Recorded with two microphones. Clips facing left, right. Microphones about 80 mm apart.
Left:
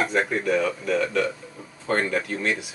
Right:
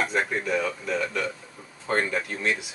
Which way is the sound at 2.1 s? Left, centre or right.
Centre.